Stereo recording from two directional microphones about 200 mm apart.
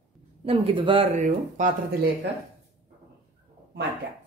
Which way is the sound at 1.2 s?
40° right (ahead or behind).